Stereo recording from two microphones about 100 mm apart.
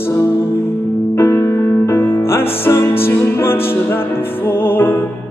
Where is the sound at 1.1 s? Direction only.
25° left (ahead or behind).